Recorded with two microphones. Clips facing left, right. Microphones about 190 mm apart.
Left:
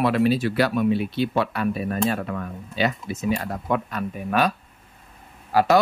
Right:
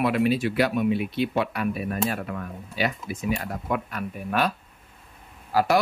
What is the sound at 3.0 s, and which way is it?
Speech, 25° left (ahead or behind).